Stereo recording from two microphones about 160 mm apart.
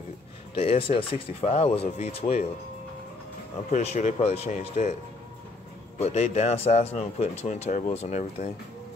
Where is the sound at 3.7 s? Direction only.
45° left (ahead or behind).